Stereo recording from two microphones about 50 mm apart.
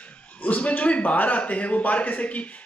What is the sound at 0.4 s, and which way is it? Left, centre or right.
A man's voice, left.